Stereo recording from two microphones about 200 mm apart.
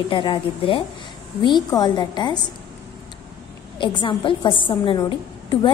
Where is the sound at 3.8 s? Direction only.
25° left (ahead or behind).